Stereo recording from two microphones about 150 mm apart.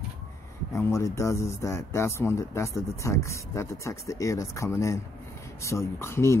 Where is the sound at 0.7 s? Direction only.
20° left (ahead or behind).